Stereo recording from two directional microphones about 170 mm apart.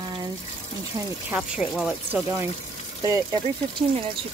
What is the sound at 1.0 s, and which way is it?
Speech, 20° right (ahead or behind).